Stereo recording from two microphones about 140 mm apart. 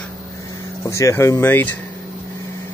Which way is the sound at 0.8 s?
20° left (ahead or behind).